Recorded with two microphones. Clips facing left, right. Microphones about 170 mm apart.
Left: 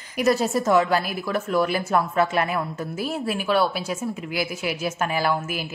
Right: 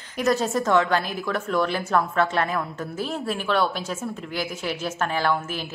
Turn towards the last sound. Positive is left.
turn(degrees=10)  # may be behind; listen again after turning